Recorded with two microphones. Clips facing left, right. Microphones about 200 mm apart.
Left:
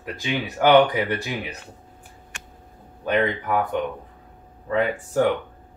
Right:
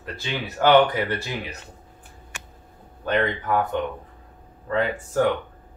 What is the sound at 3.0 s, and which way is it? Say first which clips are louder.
Speech: left 1 dB; 10° left (ahead or behind).